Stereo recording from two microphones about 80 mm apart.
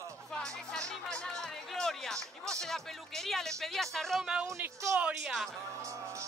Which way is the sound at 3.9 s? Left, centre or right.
Centre.